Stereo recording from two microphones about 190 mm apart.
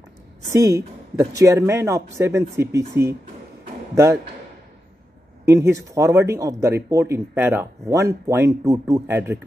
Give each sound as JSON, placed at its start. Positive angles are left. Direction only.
{"t": 0.5, "sound": "speech", "side_deg": -15}
{"t": 3.9, "sound": "a man's voice", "side_deg": -15}
{"t": 5.4, "sound": "speech", "side_deg": -15}